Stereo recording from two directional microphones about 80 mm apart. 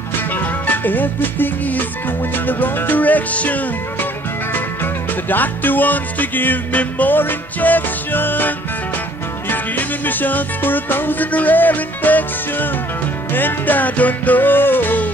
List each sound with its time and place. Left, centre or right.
0.3 s music: left
5.3 s music: left